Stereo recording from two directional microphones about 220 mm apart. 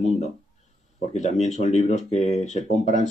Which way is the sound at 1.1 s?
30° left (ahead or behind).